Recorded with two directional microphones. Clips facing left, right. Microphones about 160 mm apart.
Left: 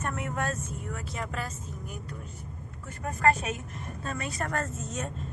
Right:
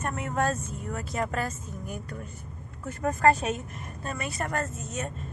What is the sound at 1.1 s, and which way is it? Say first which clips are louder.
Speech: right 7 dB; 50° right (ahead or behind).